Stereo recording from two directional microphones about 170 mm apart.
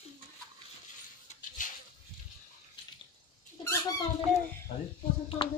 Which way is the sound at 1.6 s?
50° left (ahead or behind).